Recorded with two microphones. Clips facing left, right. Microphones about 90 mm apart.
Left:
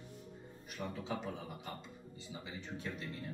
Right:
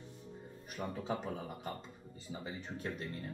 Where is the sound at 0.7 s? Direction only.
40° right (ahead or behind).